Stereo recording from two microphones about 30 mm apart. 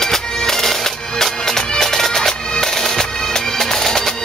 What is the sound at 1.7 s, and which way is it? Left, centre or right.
Bagpipes, centre.